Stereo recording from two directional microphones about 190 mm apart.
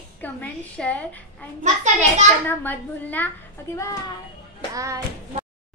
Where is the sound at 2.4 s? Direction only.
10° left (ahead or behind).